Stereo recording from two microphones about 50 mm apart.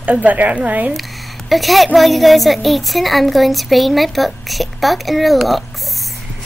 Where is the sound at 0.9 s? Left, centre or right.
Centre.